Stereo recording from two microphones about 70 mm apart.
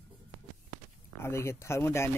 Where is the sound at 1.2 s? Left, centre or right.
Left.